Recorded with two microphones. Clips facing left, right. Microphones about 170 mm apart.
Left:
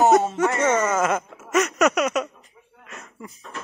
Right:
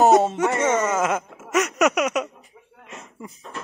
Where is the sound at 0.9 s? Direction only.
10° right (ahead or behind).